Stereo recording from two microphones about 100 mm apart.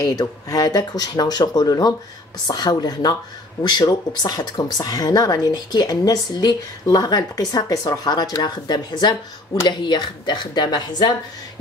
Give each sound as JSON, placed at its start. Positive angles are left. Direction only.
{"t": 0.0, "sound": "speech", "side_deg": 40}